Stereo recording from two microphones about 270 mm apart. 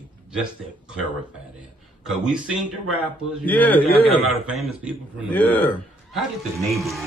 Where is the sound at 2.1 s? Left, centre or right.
Centre.